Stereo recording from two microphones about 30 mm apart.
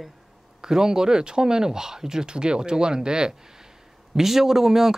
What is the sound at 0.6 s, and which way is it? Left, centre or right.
Speech, centre.